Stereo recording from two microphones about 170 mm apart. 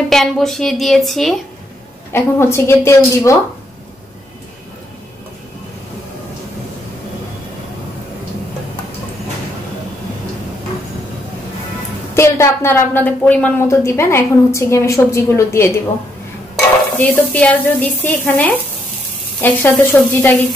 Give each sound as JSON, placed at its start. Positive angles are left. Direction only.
{"t": 0.1, "sound": "a woman's voice", "side_deg": 0}
{"t": 2.1, "sound": "a woman's voice", "side_deg": 15}
{"t": 12.1, "sound": "a woman's voice", "side_deg": 15}
{"t": 17.0, "sound": "a woman's voice", "side_deg": 10}